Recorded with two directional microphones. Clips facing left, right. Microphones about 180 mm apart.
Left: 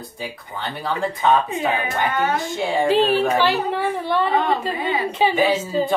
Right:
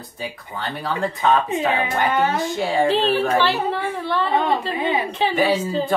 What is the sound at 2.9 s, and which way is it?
A woman's voice, 10° left (ahead or behind).